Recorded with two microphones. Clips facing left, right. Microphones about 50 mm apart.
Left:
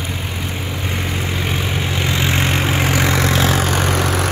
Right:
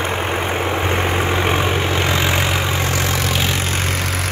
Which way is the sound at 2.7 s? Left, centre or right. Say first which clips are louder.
Left 2 dB; left.